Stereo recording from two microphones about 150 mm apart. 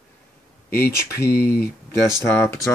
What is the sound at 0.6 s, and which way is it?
Speech, 15° left (ahead or behind).